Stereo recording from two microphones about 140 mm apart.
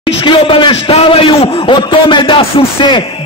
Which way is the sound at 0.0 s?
40° left (ahead or behind).